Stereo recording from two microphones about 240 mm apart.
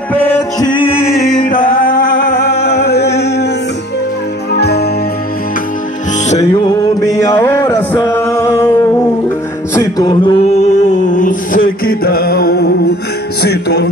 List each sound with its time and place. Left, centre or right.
0.1 s music: centre
0.8 s music: left
4.5 s music: left
6.6 s music: centre; by 13.8 s left